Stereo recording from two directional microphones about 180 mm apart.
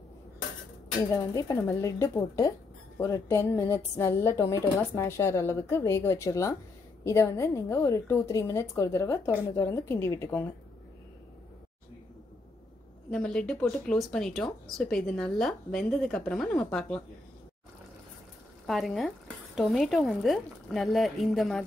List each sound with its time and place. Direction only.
1.1 s speech: 15° left (ahead or behind)
13.1 s speech: 5° left (ahead or behind)
18.7 s speech: centre (ahead or behind)